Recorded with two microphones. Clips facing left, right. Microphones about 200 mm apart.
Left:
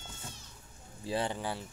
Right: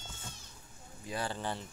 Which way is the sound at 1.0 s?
30° left (ahead or behind).